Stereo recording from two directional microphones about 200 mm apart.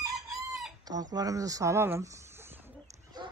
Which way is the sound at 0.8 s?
20° right (ahead or behind).